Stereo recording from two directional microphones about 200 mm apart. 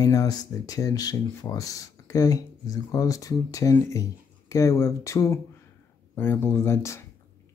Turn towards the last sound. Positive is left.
turn(degrees=15)  # may be behind; listen again after turning